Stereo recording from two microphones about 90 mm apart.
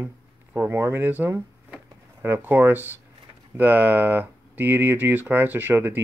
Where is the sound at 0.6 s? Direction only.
25° right (ahead or behind).